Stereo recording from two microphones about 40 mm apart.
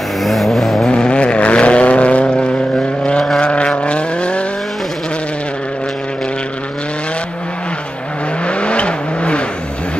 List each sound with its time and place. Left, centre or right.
0.2 s vehicle: centre
0.8 s vehicle: left
8.5 s vehicle: left